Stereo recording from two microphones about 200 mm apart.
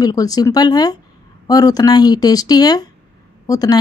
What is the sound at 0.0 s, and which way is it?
Speech, 20° left (ahead or behind).